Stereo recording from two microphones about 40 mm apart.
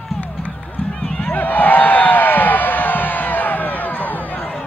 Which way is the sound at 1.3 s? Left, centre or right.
Left.